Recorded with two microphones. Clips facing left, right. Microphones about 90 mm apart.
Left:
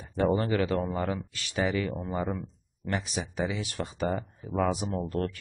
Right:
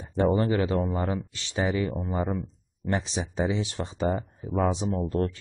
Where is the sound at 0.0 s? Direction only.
30° right (ahead or behind).